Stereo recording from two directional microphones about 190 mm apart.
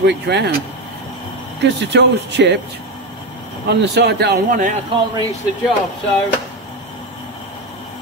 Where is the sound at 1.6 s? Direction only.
65° right (ahead or behind).